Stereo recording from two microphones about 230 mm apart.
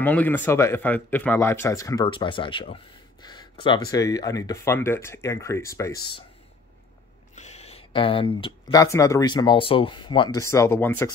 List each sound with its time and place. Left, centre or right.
0.0 s speech: centre
7.3 s speech: left; by 11.1 s centre